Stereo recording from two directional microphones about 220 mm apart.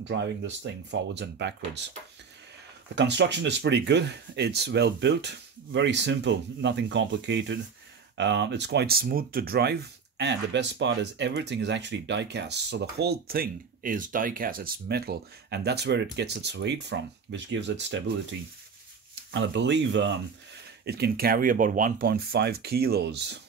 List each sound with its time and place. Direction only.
1.1 s speech: 50° right (ahead or behind)
3.0 s speech: 55° right (ahead or behind)
19.3 s speech: 55° right (ahead or behind)